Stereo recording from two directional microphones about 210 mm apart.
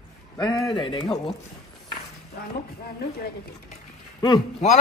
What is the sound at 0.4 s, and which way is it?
Speech, 20° left (ahead or behind).